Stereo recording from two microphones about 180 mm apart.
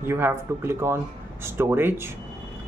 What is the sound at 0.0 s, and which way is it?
Speech, 10° right (ahead or behind).